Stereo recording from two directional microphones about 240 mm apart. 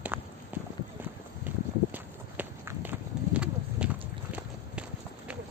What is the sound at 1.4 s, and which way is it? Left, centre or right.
Walk, centre.